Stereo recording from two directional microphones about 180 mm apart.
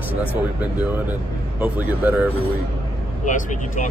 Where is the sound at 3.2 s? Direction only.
45° left (ahead or behind).